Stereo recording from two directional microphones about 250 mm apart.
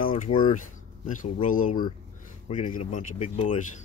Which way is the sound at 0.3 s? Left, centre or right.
Left.